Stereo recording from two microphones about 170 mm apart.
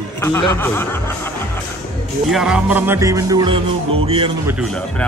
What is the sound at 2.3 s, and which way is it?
Music, 5° right (ahead or behind).